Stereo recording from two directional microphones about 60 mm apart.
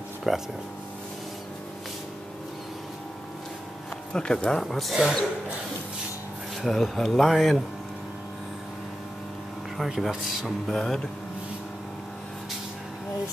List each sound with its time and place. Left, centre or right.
0.3 s speech: centre
4.1 s speech: centre
6.6 s speech: centre
10.0 s speech: centre